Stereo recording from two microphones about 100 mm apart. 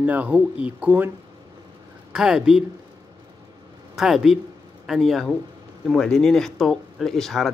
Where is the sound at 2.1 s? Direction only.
5° right (ahead or behind).